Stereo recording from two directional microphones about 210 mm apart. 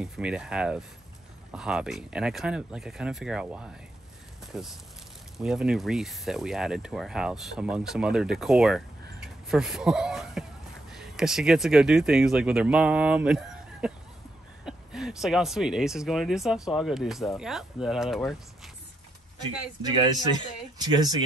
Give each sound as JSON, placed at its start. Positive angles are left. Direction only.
{"t": 0.0, "sound": "speech", "side_deg": -5}
{"t": 9.2, "sound": "a sound", "side_deg": 0}
{"t": 10.9, "sound": "speech", "side_deg": 0}
{"t": 20.7, "sound": "speech", "side_deg": -20}